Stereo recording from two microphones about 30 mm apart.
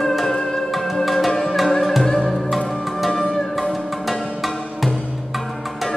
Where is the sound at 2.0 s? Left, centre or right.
Centre.